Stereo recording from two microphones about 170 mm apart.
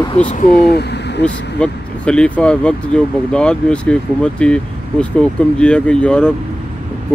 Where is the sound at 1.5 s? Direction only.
5° left (ahead or behind).